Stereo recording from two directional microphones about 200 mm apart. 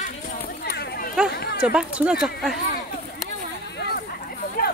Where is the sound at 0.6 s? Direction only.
50° left (ahead or behind).